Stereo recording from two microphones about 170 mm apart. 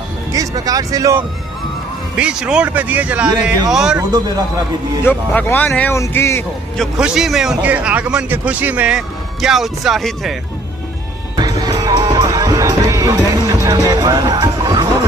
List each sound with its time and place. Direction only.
0.3 s speech: 20° right (ahead or behind)
2.1 s a man's voice: 5° right (ahead or behind)
5.0 s speech: 10° left (ahead or behind)
6.8 s a man's voice: centre (ahead or behind)
11.3 s music: 25° right (ahead or behind)